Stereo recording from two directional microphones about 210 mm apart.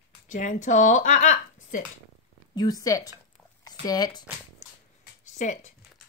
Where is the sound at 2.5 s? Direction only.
15° left (ahead or behind).